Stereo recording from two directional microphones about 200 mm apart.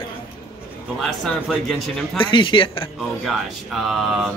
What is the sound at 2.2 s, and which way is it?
Speech, 25° left (ahead or behind).